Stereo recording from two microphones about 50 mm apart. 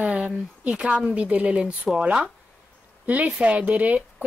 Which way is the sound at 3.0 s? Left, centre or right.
Right.